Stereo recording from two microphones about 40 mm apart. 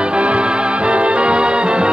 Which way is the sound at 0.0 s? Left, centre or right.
Right.